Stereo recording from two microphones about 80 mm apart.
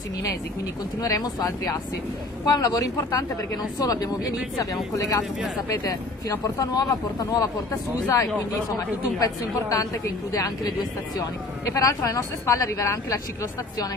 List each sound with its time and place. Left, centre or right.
1.0 s a woman's voice: left
8.7 s a woman's voice: left